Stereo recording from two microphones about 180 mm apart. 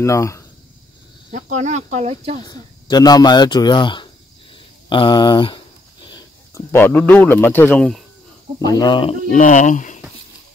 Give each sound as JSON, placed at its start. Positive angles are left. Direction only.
{"t": 0.0, "sound": "speech", "side_deg": 15}
{"t": 1.3, "sound": "speech", "side_deg": -40}
{"t": 2.4, "sound": "speech", "side_deg": 25}
{"t": 4.8, "sound": "a sound", "side_deg": 25}
{"t": 6.5, "sound": "speech", "side_deg": 15}
{"t": 8.6, "sound": "speech", "side_deg": 25}
{"t": 9.3, "sound": "speech", "side_deg": 45}